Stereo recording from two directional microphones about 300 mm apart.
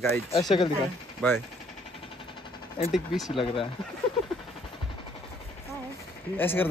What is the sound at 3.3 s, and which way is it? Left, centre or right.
Speech, centre.